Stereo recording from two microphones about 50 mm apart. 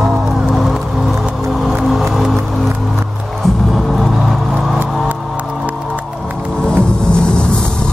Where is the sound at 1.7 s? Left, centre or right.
Centre.